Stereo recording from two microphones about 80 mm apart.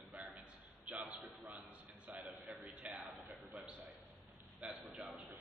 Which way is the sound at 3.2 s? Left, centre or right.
Centre.